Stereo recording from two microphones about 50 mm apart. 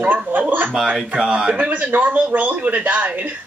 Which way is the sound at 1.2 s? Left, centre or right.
Centre.